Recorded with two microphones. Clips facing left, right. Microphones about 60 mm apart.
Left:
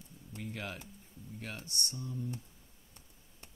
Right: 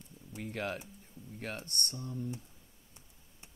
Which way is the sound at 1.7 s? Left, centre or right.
Right.